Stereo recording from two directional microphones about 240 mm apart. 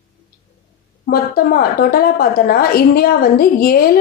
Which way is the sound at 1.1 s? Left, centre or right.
Left.